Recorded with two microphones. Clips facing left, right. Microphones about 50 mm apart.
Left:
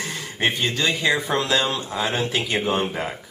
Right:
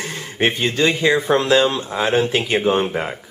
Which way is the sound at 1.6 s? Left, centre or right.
Centre.